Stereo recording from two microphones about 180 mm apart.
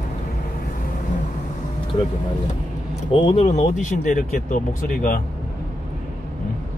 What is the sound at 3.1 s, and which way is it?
Speech, 35° left (ahead or behind).